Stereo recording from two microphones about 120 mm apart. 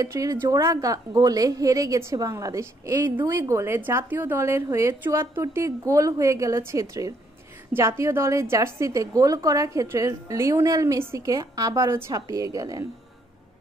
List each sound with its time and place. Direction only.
0.0 s a woman's voice: 30° right (ahead or behind)